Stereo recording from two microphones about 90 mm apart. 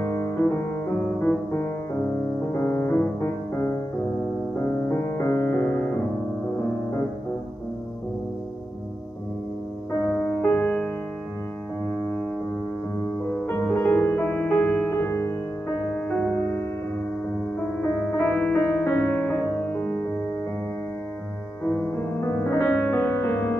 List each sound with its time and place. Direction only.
1.2 s music: 25° left (ahead or behind)
10.4 s music: 15° left (ahead or behind)
13.5 s music: 20° left (ahead or behind)
18.1 s music: 10° left (ahead or behind)
21.6 s music: 30° left (ahead or behind)